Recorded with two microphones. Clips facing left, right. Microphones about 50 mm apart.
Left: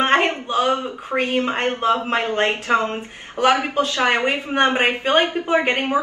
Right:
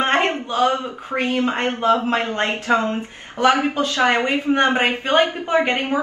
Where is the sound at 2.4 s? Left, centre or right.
Left.